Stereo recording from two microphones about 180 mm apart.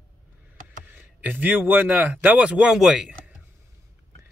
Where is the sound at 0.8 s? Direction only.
10° right (ahead or behind).